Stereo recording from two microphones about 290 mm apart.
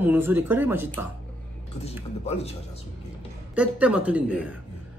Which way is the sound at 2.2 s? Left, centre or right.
Left.